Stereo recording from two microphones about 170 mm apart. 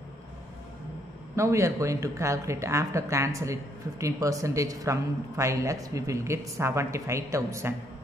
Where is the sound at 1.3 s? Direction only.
15° right (ahead or behind).